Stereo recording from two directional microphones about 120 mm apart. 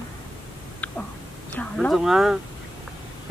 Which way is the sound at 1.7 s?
Centre (ahead or behind).